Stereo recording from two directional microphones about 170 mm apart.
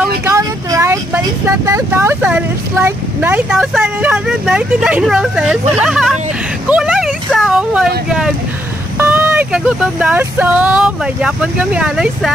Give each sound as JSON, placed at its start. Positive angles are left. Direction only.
{"t": 0.2, "sound": "vehicle", "side_deg": -20}
{"t": 1.7, "sound": "speech", "side_deg": -15}